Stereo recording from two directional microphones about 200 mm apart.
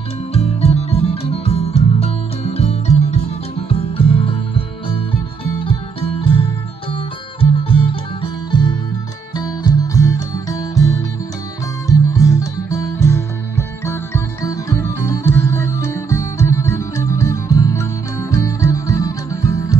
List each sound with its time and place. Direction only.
0.3 s music: 30° left (ahead or behind)
12.1 s music: 15° left (ahead or behind)